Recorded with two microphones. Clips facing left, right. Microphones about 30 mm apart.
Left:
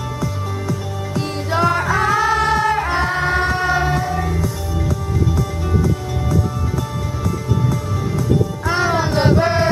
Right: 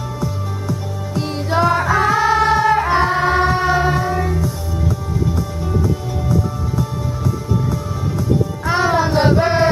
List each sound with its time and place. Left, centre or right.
1.1 s music: centre
7.7 s music: centre